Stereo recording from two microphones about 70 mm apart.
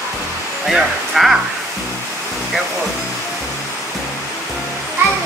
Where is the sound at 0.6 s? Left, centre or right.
Centre.